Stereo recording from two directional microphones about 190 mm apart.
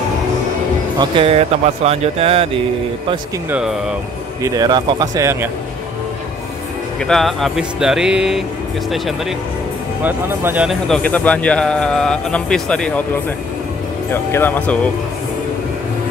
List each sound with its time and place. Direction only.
0.9 s speech: 30° right (ahead or behind)
3.4 s speech: 5° right (ahead or behind)
4.4 s speech: 20° right (ahead or behind)
7.1 s speech: centre (ahead or behind)
10.0 s speech: 10° right (ahead or behind)
14.1 s speech: 10° left (ahead or behind)